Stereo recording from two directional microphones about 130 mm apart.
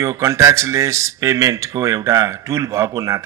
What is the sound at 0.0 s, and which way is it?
A man's voice, 20° right (ahead or behind).